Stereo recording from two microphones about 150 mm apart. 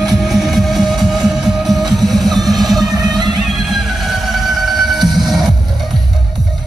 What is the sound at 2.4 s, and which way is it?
Music, 25° right (ahead or behind).